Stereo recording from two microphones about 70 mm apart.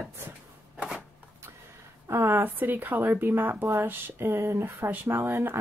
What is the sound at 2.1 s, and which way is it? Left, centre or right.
Speech, right.